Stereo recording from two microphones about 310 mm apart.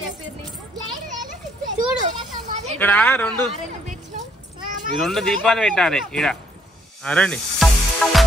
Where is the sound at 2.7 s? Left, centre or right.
Centre.